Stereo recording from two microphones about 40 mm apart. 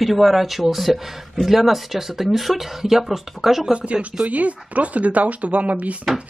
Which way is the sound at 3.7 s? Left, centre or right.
Right.